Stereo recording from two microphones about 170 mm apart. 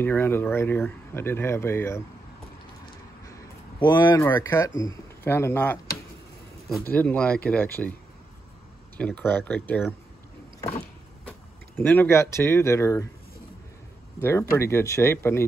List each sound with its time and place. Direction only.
0.0 s speech: 10° left (ahead or behind)
3.8 s speech: 25° left (ahead or behind)
6.9 s speech: 10° left (ahead or behind)
11.2 s speech: 10° left (ahead or behind)
14.2 s speech: 15° left (ahead or behind)